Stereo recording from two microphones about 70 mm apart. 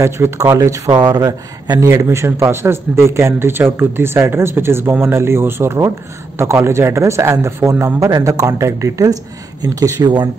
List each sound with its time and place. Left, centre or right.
0.0 s speech: right
0.6 s speech: right
1.8 s speech: right